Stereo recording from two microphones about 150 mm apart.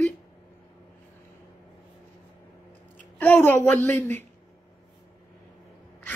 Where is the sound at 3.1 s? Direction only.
15° left (ahead or behind).